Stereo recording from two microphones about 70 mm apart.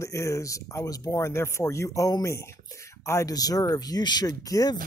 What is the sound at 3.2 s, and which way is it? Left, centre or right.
Speech, left.